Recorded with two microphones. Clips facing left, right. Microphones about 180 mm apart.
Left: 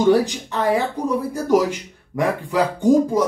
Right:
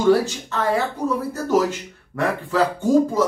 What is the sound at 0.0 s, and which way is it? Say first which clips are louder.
Speech: left 1 dB; 15° left (ahead or behind).